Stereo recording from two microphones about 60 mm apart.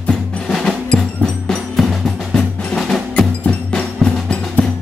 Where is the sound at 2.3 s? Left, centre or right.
Centre.